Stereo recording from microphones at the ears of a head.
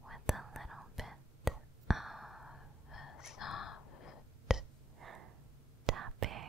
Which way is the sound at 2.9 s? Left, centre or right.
Left.